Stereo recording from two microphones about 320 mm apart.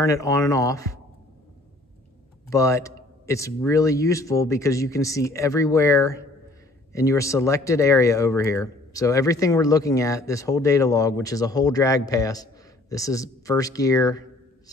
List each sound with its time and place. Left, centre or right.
0.0 s speech: centre
2.5 s speech: centre